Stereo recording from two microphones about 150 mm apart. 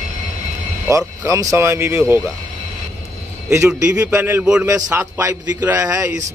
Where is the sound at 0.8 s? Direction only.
20° right (ahead or behind).